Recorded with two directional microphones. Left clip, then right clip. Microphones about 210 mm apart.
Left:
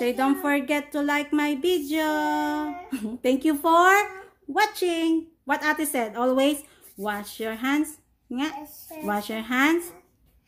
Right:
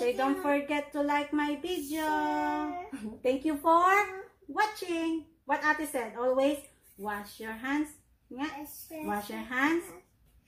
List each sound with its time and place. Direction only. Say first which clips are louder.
0.0 s speech: left 5 dB; 30° left (ahead or behind)
9.0 s speech: left 7 dB; 40° left (ahead or behind)